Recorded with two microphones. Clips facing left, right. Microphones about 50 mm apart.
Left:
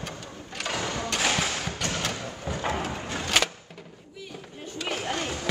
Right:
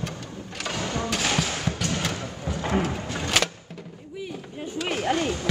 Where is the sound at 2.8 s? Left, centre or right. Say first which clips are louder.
Right 3 dB; centre.